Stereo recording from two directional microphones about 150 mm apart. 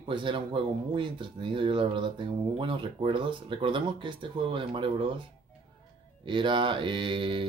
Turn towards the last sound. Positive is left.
turn(degrees=-35)  # may be behind; listen again after turning